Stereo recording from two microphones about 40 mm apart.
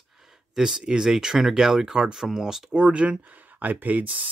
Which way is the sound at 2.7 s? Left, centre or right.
Right.